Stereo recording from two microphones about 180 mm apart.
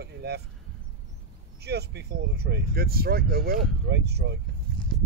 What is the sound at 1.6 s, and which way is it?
Speech, 65° right (ahead or behind).